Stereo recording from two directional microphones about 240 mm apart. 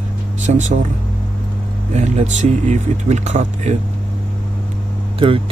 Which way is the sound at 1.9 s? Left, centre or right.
Right.